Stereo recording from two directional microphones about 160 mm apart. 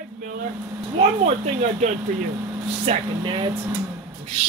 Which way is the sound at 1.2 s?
45° right (ahead or behind).